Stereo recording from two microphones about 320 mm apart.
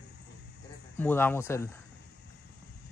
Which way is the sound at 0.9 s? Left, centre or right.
Centre.